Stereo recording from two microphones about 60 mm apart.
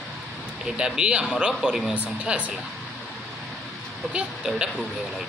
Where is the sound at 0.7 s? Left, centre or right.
Centre.